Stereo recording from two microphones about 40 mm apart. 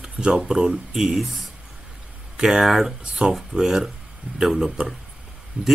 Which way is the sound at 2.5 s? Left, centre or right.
Centre.